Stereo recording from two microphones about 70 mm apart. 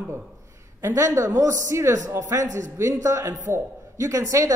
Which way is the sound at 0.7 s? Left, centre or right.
Right.